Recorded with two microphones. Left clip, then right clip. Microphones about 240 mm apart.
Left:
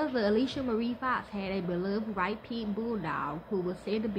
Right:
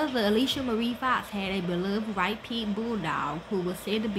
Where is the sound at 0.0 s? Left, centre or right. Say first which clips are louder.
Right 3 dB; centre.